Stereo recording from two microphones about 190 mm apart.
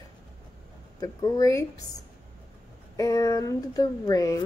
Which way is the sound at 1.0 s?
20° left (ahead or behind).